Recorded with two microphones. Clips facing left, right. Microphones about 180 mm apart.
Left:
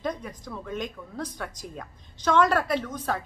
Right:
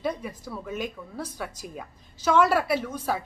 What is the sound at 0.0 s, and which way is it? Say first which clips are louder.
Speech: right 2 dB; 5° right (ahead or behind).